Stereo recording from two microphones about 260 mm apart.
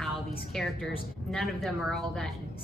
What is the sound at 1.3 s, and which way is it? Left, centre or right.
A woman's voice, centre.